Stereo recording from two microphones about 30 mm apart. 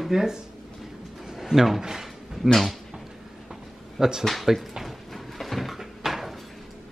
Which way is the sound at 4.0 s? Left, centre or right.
Centre.